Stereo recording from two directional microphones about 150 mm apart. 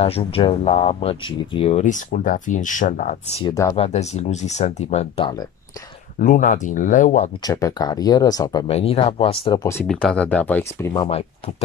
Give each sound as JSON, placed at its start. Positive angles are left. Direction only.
{"t": 0.0, "sound": "speech", "side_deg": 40}
{"t": 3.4, "sound": "speech", "side_deg": 20}
{"t": 3.7, "sound": "speech", "side_deg": 45}
{"t": 6.1, "sound": "speech", "side_deg": 60}
{"t": 7.4, "sound": "speech", "side_deg": 25}
{"t": 8.6, "sound": "speech", "side_deg": 40}
{"t": 9.6, "sound": "speech", "side_deg": 20}
{"t": 9.8, "sound": "speech", "side_deg": 5}
{"t": 11.1, "sound": "speech", "side_deg": 40}